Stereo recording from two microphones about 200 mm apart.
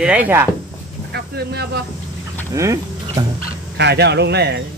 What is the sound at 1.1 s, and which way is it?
Speech, 55° right (ahead or behind).